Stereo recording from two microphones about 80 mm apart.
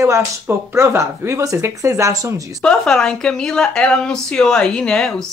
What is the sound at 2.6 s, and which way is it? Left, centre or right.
Speech, centre.